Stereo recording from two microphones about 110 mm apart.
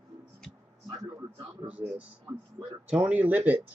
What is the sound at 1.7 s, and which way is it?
Speech, 10° right (ahead or behind).